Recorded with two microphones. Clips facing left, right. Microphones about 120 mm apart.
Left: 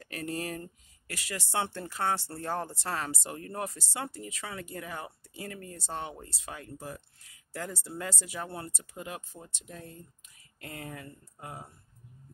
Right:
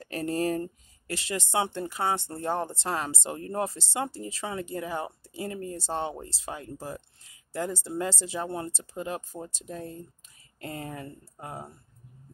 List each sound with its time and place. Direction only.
0.0 s speech: 35° right (ahead or behind)